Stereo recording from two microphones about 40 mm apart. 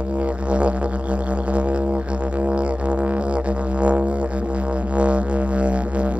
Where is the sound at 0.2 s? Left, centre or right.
Right.